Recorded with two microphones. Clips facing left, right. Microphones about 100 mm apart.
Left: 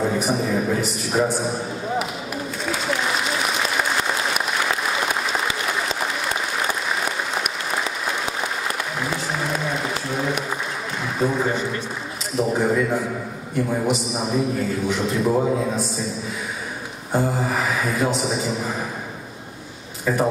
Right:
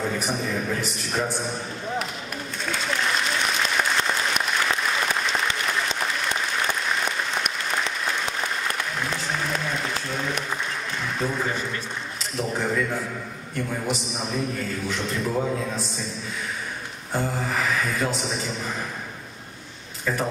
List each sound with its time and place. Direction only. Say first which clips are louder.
0.0 s a man's voice: left 5 dB; 10° left (ahead or behind)
2.6 s applause: left 2 dB; 5° left (ahead or behind)
11.1 s a man's voice: left 6 dB; 10° left (ahead or behind)
15.2 s a man's voice: left 6 dB; 20° left (ahead or behind)
15.7 s a man's voice: left 6 dB; centre (ahead or behind)
17.1 s a man's voice: left 5 dB; 10° left (ahead or behind)